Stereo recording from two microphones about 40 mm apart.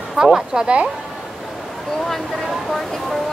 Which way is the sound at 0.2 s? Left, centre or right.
Centre.